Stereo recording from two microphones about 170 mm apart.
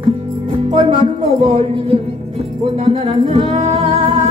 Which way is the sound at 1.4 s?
35° right (ahead or behind).